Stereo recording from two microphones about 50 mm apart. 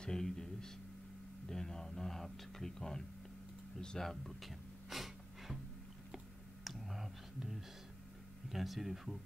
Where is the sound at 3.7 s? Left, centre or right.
Centre.